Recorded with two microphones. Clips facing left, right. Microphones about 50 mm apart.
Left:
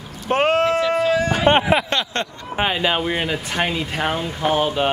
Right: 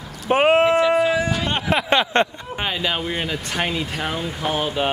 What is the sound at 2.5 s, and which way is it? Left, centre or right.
Speech, centre.